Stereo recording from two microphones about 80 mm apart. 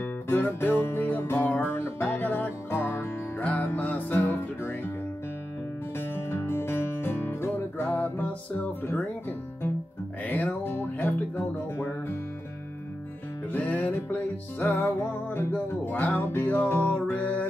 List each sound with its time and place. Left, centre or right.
0.0 s music: left
5.9 s music: left
10.2 s music: left
13.5 s music: left